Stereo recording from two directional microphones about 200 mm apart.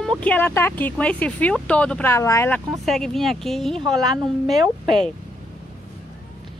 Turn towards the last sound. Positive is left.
turn(degrees=0)  # may be behind; listen again after turning